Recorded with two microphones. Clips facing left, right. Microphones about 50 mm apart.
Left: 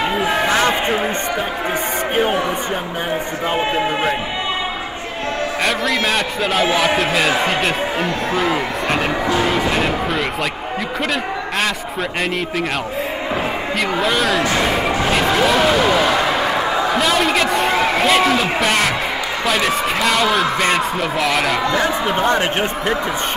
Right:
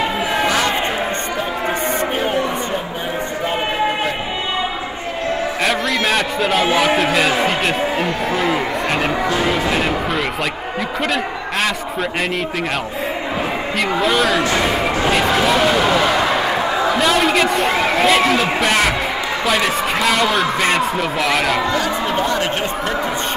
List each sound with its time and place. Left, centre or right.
0.5 s a sound: left
5.6 s a man's voice: centre
13.7 s a man's voice: centre
21.7 s speech: left